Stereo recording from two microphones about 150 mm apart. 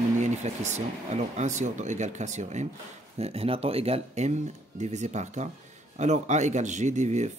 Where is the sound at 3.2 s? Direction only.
40° right (ahead or behind).